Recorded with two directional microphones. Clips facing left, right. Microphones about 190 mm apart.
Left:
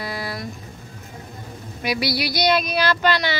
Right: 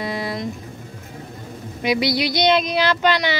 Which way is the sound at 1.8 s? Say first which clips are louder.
Right 4 dB; 20° right (ahead or behind).